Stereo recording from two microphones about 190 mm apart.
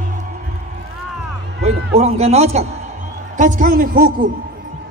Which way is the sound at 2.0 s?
35° right (ahead or behind).